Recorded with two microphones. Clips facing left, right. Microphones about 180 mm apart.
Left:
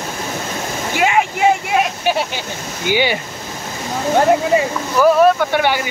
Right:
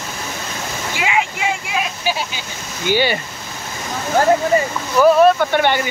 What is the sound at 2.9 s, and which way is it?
Speech, 15° left (ahead or behind).